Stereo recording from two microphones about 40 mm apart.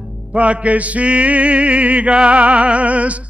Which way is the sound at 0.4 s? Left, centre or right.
Right.